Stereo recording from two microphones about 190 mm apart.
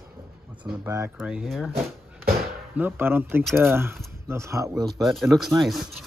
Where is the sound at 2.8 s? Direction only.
10° right (ahead or behind).